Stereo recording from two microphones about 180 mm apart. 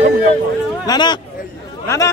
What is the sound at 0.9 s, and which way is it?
A man's voice, 25° left (ahead or behind).